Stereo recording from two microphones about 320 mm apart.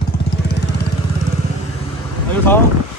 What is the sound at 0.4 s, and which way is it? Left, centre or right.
Vehicle, left.